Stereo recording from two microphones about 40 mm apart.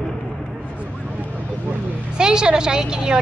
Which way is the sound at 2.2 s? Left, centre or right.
Centre.